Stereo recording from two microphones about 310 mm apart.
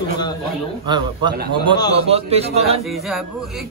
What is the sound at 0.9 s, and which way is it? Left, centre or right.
A man's voice, centre.